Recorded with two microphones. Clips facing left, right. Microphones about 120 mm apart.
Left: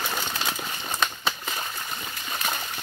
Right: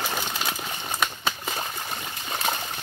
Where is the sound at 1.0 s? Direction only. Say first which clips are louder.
Even; 15° right (ahead or behind).